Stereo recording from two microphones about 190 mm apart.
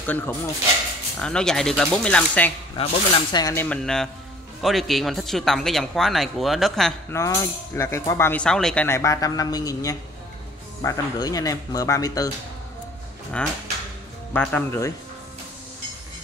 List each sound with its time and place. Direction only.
0.0 s speech: 10° left (ahead or behind)
2.8 s speech: 25° left (ahead or behind)
3.6 s speech: 5° left (ahead or behind)
7.1 s speech: 15° left (ahead or behind)
14.3 s speech: 10° left (ahead or behind)